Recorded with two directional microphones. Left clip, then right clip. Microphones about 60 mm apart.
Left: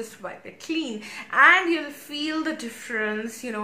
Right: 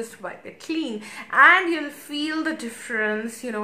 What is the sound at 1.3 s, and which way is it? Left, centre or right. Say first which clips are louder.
A woman's voice: right 2 dB; right.